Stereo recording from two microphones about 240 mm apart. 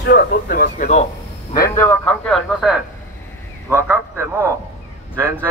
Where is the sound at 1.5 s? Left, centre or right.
Centre.